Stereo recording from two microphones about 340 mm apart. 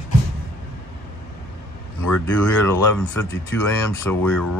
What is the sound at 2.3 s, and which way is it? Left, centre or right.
Speech, centre.